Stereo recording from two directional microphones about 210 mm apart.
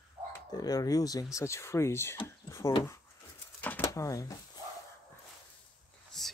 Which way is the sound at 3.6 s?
10° left (ahead or behind).